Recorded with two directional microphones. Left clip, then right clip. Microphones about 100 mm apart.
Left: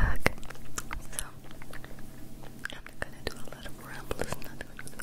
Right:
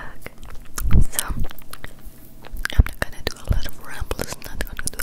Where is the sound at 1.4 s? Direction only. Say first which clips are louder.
Right 8 dB; 35° right (ahead or behind).